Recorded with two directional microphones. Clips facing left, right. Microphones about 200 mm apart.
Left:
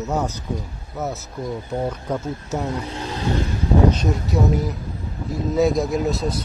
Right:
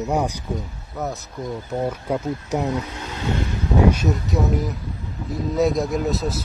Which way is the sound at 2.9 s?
30° left (ahead or behind).